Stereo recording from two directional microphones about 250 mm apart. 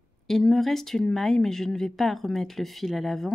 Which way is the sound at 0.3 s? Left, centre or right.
Centre.